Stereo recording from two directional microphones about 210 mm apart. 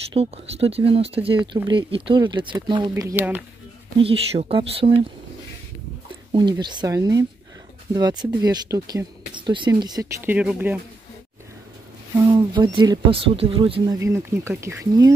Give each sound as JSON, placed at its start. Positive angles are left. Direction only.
{"t": 0.1, "sound": "speech", "side_deg": -30}
{"t": 4.0, "sound": "speech", "side_deg": -25}
{"t": 6.5, "sound": "speech", "side_deg": -20}
{"t": 10.3, "sound": "speech", "side_deg": -5}
{"t": 12.2, "sound": "speech", "side_deg": -20}
{"t": 13.9, "sound": "speech", "side_deg": -15}